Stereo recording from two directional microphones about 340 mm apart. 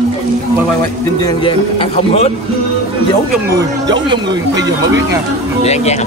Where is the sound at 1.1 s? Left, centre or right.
Centre.